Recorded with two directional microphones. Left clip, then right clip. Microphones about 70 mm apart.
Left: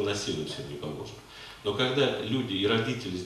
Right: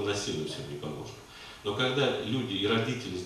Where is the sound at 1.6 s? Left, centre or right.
Centre.